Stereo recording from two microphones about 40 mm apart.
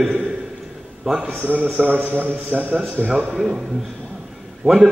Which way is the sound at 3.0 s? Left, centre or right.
Left.